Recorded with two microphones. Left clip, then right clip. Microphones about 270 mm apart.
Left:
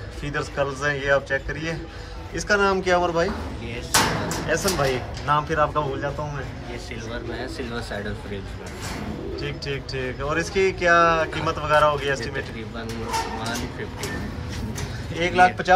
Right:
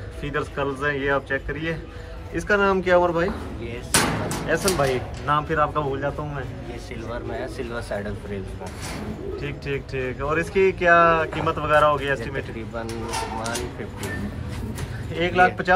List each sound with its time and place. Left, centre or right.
0.2 s speech: centre
4.5 s speech: centre
7.3 s speech: right
9.4 s speech: centre
15.1 s speech: centre